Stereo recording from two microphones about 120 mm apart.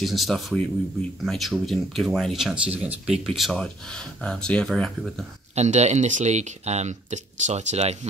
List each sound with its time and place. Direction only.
0.0 s speech: centre (ahead or behind)
5.5 s speech: 65° right (ahead or behind)